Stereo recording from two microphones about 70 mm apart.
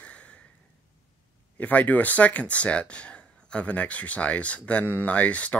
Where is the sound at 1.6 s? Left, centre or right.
Left.